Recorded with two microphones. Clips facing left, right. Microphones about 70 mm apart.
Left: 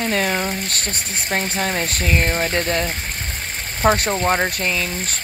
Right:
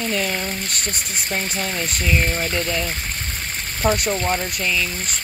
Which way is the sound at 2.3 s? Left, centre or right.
Left.